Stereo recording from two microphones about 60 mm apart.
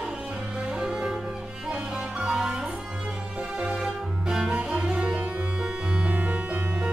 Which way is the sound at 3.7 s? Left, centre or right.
Centre.